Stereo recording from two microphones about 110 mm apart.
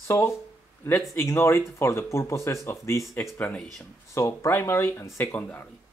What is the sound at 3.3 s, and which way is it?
Speech, 10° left (ahead or behind).